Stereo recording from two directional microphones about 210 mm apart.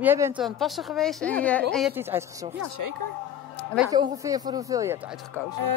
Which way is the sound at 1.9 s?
10° right (ahead or behind).